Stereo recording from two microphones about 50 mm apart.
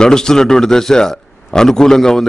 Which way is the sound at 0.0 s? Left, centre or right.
Centre.